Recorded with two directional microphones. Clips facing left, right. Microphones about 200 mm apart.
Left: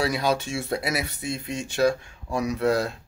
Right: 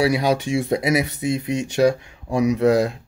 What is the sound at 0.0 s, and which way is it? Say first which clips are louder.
Speech: right 5 dB; 10° right (ahead or behind).